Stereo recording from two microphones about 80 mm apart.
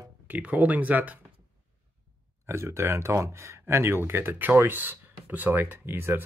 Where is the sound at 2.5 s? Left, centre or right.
Right.